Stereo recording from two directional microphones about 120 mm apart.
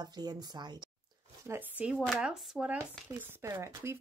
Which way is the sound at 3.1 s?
25° right (ahead or behind).